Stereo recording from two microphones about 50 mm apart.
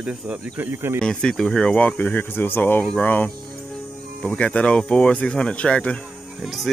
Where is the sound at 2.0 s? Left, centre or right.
Left.